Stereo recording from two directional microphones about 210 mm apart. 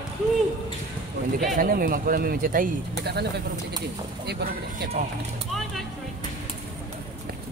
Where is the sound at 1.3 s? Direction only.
40° right (ahead or behind).